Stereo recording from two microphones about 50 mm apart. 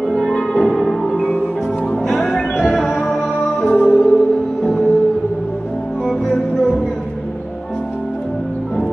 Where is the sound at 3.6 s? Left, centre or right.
Left.